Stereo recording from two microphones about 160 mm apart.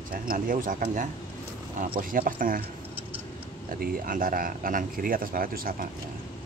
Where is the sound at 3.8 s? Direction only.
60° right (ahead or behind).